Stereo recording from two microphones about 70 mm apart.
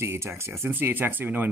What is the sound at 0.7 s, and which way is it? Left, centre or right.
Speech, right.